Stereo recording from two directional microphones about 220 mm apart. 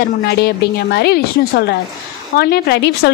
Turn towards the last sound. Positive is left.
turn(degrees=50)  # may be behind; listen again after turning